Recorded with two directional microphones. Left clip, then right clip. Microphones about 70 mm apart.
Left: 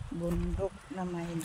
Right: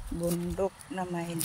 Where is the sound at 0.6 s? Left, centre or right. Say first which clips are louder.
Right 4 dB; centre.